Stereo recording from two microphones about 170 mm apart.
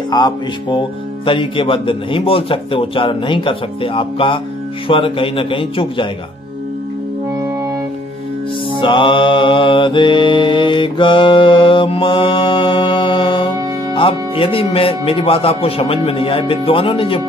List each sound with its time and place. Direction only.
0.1 s speech: 25° left (ahead or behind)
8.8 s mantra: 30° left (ahead or behind)
13.9 s speech: 30° left (ahead or behind)